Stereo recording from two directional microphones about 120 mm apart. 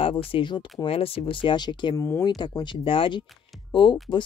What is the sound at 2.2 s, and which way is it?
Speech, 35° left (ahead or behind).